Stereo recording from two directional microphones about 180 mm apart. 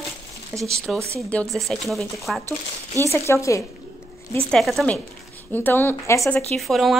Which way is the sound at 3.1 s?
15° left (ahead or behind).